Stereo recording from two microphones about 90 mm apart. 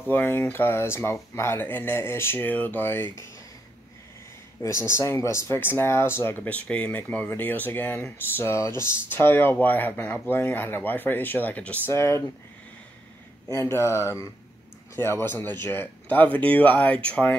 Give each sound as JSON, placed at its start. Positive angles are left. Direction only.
{"t": 0.1, "sound": "speech", "side_deg": 25}
{"t": 4.6, "sound": "speech", "side_deg": 35}
{"t": 11.9, "sound": "speech", "side_deg": 30}
{"t": 13.5, "sound": "speech", "side_deg": 30}